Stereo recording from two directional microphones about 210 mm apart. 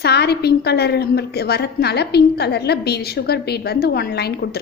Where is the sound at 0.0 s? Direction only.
50° left (ahead or behind).